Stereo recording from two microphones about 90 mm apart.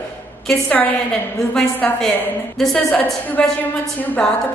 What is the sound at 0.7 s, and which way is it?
A woman's voice, 20° left (ahead or behind).